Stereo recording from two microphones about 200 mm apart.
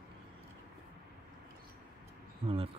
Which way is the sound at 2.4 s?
30° right (ahead or behind).